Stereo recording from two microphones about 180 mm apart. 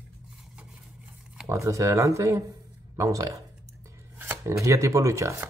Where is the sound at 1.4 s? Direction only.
15° right (ahead or behind).